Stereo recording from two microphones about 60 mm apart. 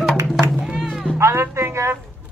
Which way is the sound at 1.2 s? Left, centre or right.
Right.